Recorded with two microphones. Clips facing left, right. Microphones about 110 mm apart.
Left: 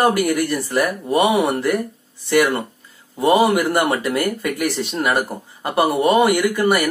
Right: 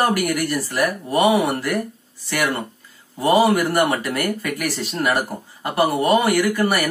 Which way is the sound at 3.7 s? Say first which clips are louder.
Left 1 dB; 25° left (ahead or behind).